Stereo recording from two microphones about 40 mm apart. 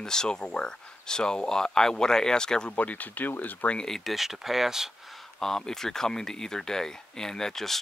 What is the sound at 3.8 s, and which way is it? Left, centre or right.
Speech, centre.